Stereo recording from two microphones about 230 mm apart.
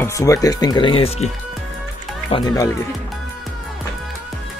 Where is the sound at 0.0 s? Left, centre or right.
Centre.